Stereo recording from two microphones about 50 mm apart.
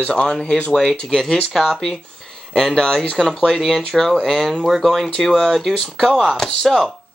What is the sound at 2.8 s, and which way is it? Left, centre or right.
Speech, centre.